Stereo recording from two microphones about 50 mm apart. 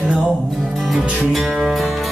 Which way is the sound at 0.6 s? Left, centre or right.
Centre.